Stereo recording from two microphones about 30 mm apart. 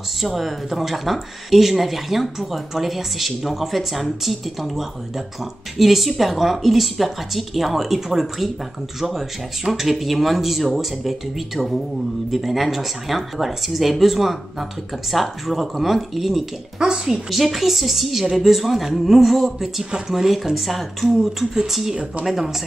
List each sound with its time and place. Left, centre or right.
0.2 s speech: centre
9.7 s speech: centre
16.8 s speech: centre
17.3 s speech: centre
19.4 s speech: centre